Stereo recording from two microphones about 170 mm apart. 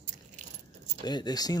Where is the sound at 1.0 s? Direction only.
25° left (ahead or behind).